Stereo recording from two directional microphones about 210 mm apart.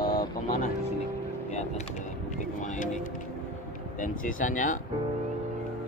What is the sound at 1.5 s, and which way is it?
Vehicle, 35° left (ahead or behind).